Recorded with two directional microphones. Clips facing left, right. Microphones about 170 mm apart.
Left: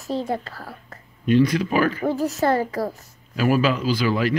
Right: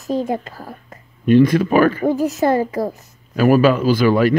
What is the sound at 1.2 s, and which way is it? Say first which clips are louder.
Speech: right 6 dB; 50° right (ahead or behind).